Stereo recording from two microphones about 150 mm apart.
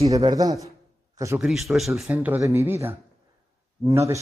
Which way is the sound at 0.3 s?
25° right (ahead or behind).